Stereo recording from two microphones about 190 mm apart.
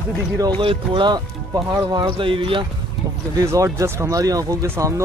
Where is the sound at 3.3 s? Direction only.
15° right (ahead or behind).